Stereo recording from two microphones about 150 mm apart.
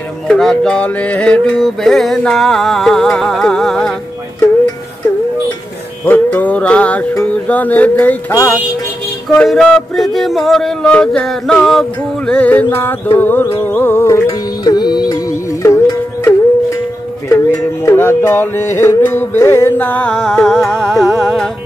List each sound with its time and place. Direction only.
0.3 s music: 5° left (ahead or behind)
6.0 s music: 10° left (ahead or behind)
9.4 s music: 5° left (ahead or behind)